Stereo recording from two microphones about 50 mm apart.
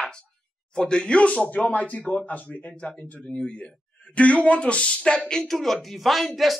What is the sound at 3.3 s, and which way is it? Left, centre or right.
Speech, left.